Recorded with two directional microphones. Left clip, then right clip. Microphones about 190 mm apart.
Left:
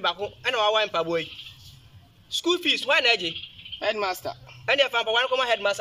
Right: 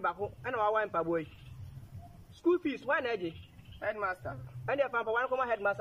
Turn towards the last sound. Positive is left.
turn(degrees=0)  # may be behind; listen again after turning